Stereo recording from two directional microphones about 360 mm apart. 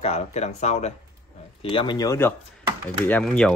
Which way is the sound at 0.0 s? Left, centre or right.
Centre.